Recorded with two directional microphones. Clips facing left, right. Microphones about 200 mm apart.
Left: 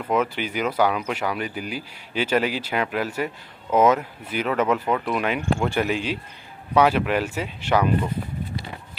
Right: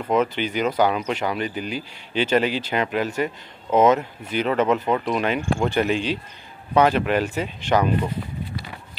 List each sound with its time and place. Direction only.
0.1 s speech: 5° left (ahead or behind)